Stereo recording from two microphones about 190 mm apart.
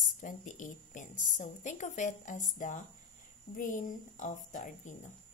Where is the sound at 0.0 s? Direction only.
40° left (ahead or behind).